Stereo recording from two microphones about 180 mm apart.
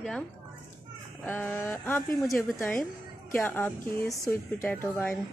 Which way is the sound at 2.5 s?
5° left (ahead or behind).